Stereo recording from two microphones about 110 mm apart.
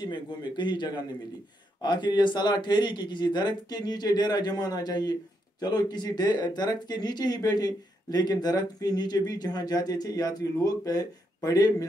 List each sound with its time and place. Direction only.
0.0 s a man's voice: 45° left (ahead or behind)